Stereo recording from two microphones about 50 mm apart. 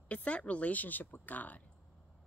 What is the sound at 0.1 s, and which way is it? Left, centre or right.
Speech, left.